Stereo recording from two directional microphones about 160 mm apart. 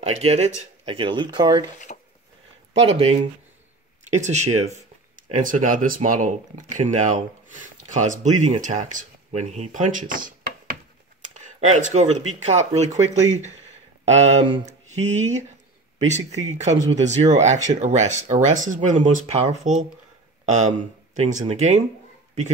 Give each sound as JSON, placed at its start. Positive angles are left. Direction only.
{"t": 0.0, "sound": "speech", "side_deg": -40}
{"t": 1.9, "sound": "a sound", "side_deg": 45}
{"t": 2.7, "sound": "speech", "side_deg": -40}
{"t": 5.3, "sound": "speech", "side_deg": -55}
{"t": 11.3, "sound": "speech", "side_deg": -45}